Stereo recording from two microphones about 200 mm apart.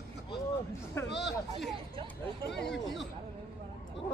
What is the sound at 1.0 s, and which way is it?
Speech, 15° left (ahead or behind).